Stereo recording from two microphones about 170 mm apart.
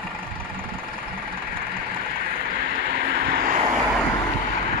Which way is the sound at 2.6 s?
85° right.